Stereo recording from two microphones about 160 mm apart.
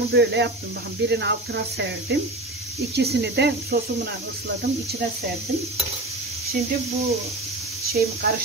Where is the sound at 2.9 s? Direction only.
85° right.